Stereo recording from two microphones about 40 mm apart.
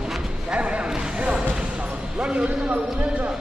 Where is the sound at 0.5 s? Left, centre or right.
Right.